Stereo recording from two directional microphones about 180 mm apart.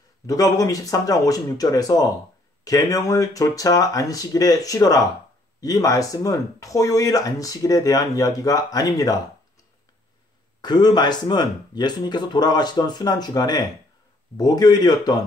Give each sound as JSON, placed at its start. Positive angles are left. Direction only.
{"t": 0.3, "sound": "speech", "side_deg": 20}
{"t": 10.6, "sound": "speech", "side_deg": 25}